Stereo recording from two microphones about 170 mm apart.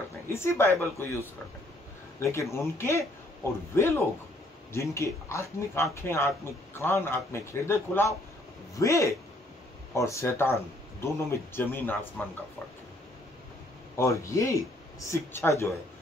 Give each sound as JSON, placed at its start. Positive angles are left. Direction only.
{"t": 0.3, "sound": "speech", "side_deg": 15}
{"t": 2.1, "sound": "speech", "side_deg": 15}
{"t": 13.9, "sound": "speech", "side_deg": 15}